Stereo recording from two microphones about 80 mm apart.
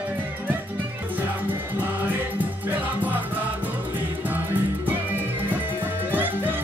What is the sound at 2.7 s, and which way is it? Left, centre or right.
Music, right.